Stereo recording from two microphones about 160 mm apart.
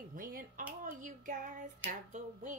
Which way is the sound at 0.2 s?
60° right (ahead or behind).